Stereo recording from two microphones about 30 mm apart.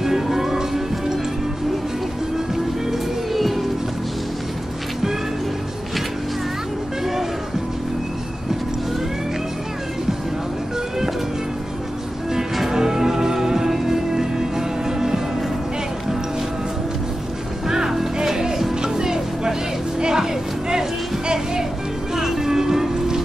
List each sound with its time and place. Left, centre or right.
0.0 s music: centre
2.5 s music: centre
12.7 s music: centre
17.6 s music: centre
22.1 s music: centre